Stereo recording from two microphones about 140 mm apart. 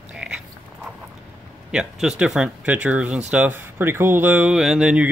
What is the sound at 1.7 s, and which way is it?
Speech, 5° right (ahead or behind).